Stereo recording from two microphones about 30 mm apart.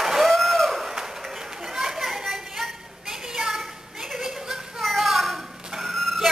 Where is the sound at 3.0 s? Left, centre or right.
Centre.